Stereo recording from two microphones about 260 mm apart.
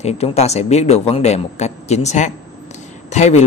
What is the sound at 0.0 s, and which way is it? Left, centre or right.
Speech, left.